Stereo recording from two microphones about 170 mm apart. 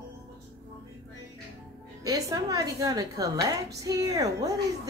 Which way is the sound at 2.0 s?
20° right (ahead or behind).